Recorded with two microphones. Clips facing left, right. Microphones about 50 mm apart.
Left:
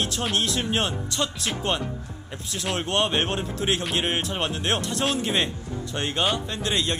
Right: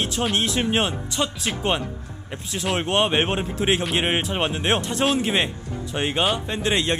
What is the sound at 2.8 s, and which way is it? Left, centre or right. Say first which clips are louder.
Speech: right 3 dB; centre.